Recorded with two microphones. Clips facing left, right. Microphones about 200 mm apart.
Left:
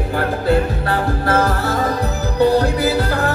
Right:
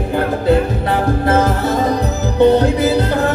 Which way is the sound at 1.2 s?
20° right (ahead or behind).